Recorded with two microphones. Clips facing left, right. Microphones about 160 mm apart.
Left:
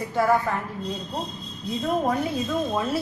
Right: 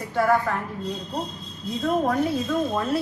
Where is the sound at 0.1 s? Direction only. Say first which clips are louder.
Right 1 dB; 5° left (ahead or behind).